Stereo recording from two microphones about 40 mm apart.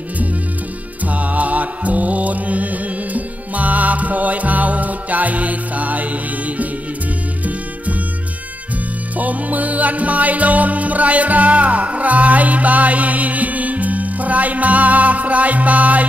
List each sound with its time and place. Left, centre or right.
1.0 s music: right
9.2 s music: right